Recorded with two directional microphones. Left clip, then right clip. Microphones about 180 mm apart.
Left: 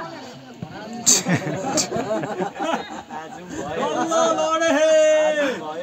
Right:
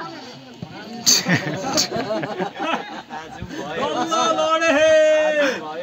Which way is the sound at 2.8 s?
5° right (ahead or behind).